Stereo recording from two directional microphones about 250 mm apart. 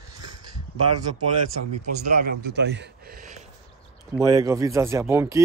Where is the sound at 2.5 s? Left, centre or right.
Right.